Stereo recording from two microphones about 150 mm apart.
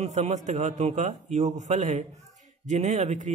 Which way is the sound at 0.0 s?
50° right (ahead or behind).